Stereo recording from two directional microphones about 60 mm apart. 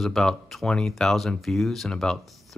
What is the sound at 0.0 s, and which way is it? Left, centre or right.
Speech, centre.